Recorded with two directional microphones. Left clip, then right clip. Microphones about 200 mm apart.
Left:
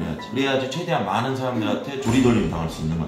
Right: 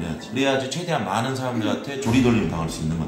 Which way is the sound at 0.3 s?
20° right (ahead or behind).